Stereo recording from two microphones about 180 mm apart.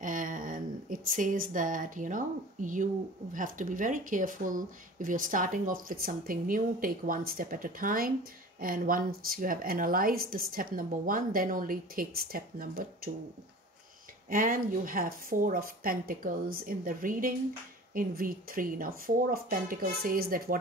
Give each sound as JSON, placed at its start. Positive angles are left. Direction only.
{"t": 0.0, "sound": "a woman's voice", "side_deg": -45}
{"t": 14.3, "sound": "speech", "side_deg": -50}